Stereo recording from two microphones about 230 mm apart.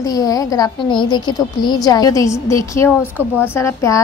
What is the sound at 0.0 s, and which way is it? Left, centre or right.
A woman's voice, centre.